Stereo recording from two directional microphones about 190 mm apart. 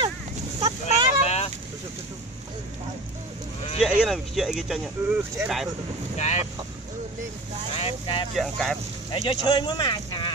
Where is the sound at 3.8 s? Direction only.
5° right (ahead or behind).